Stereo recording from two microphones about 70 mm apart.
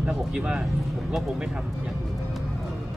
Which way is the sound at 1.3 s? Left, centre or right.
Centre.